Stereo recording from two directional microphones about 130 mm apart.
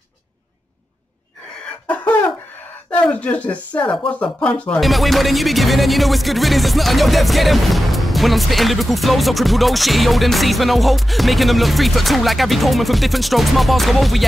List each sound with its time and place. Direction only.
2.9 s speech: 10° left (ahead or behind)
4.1 s music: 10° left (ahead or behind)